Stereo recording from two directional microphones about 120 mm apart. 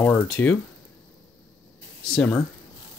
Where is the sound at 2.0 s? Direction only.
5° left (ahead or behind).